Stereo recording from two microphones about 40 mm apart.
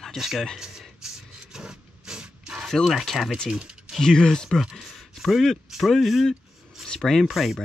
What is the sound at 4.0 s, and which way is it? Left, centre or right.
Speech, centre.